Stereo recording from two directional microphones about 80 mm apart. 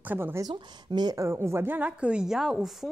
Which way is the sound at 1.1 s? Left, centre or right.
Right.